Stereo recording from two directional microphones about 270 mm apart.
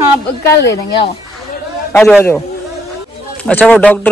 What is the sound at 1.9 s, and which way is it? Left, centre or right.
Speech, centre.